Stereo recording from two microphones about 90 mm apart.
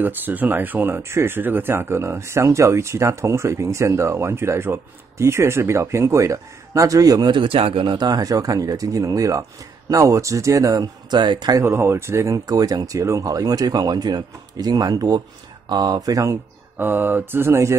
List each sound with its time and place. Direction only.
0.0 s speech: 20° right (ahead or behind); by 7.2 s 40° right (ahead or behind)
7.2 s speech: 80° right; by 11.1 s 40° right (ahead or behind)
11.1 s speech: 55° right (ahead or behind)
11.6 s speech: 30° right (ahead or behind)
16.7 s mantra: 20° right (ahead or behind)